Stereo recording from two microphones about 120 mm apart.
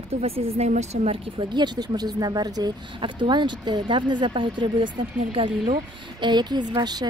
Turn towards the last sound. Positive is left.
turn(degrees=-35)  # may be behind; listen again after turning